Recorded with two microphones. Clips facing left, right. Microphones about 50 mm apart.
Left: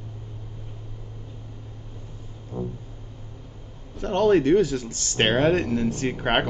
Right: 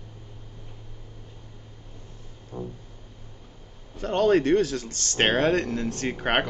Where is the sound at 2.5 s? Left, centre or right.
Centre.